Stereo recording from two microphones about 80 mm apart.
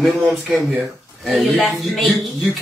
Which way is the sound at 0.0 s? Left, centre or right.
Centre.